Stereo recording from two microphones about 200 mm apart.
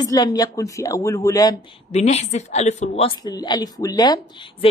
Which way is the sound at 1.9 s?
35° left (ahead or behind).